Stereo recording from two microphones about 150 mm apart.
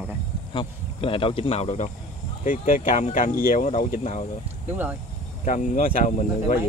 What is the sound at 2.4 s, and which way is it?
Speech, 60° left (ahead or behind).